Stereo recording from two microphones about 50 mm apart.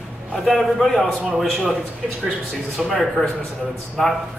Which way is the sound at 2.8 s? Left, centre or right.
Centre.